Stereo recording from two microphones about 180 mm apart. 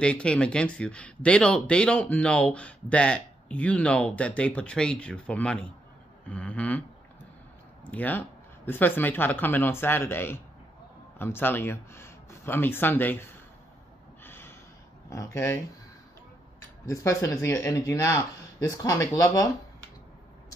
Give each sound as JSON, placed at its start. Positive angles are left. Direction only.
{"t": 0.0, "sound": "speech", "side_deg": 5}
{"t": 7.9, "sound": "speech", "side_deg": 10}
{"t": 14.2, "sound": "gasp", "side_deg": 15}
{"t": 15.0, "sound": "speech", "side_deg": 15}
{"t": 16.8, "sound": "speech", "side_deg": 15}